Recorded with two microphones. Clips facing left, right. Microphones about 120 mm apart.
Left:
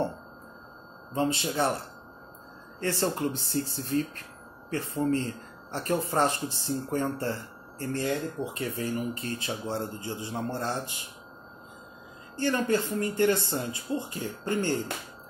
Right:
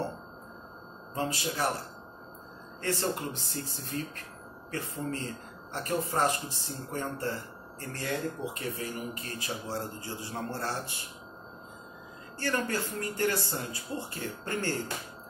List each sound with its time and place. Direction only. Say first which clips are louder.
1.1 s speech: left 5 dB; 25° left (ahead or behind)
2.8 s speech: left 4 dB; 30° left (ahead or behind)
12.4 s speech: left 5 dB; 20° left (ahead or behind)